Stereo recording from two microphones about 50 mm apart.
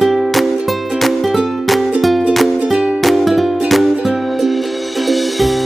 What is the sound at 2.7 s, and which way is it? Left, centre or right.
Music, centre.